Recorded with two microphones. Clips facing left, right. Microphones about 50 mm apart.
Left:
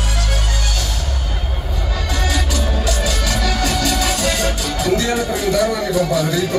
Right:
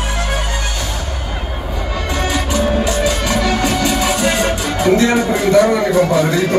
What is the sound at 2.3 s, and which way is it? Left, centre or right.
Music, right.